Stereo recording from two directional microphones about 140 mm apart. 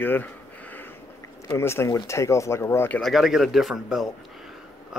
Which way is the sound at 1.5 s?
20° left (ahead or behind).